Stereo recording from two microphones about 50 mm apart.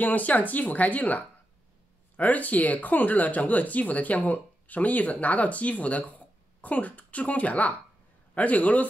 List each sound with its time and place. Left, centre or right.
0.0 s speech: left